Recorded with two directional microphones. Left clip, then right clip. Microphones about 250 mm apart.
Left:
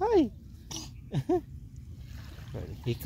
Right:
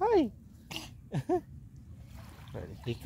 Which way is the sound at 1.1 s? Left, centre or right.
Centre.